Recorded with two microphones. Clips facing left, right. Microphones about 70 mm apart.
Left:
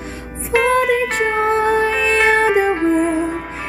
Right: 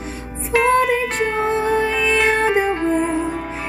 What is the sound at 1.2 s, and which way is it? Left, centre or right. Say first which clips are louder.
Music: left 3 dB; left.